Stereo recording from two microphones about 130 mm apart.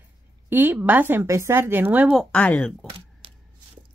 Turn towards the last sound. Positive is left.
turn(degrees=-45)  # may be behind; listen again after turning